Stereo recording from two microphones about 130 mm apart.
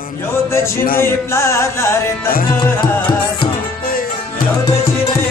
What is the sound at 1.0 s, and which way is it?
Music, 20° left (ahead or behind).